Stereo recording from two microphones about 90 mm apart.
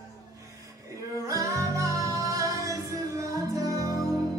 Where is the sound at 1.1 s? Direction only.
35° right (ahead or behind).